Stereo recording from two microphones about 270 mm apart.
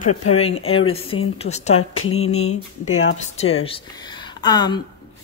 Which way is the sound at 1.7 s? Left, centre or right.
Left.